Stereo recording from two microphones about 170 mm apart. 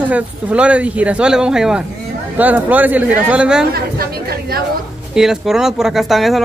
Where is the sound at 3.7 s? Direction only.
65° right (ahead or behind).